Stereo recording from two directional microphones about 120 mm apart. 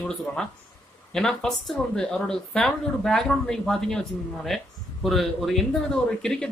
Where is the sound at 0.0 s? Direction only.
5° left (ahead or behind).